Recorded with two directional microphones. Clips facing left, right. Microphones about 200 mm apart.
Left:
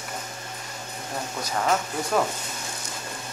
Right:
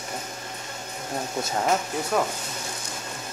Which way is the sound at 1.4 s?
25° right (ahead or behind).